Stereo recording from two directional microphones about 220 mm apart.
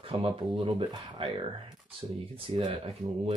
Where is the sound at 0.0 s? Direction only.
25° right (ahead or behind).